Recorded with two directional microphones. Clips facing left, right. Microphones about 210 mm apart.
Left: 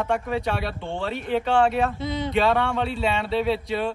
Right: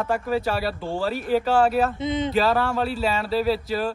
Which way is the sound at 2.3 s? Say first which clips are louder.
Left 3 dB; centre (ahead or behind).